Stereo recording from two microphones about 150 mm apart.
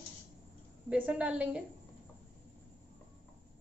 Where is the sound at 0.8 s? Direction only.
10° right (ahead or behind).